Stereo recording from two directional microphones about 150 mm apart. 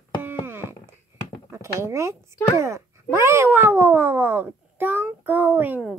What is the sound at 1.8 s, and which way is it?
Speech, 20° right (ahead or behind).